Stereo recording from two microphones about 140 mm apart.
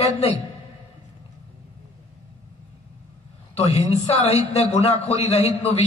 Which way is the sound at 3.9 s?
50° left (ahead or behind).